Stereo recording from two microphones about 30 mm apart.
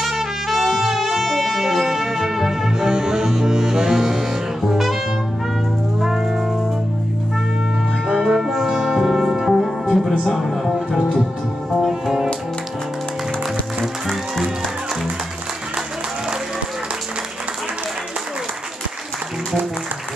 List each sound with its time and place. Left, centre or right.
0.0 s brass instrument: centre
2.9 s music: right
5.9 s music: centre
8.1 s brass instrument: centre
10.2 s music: centre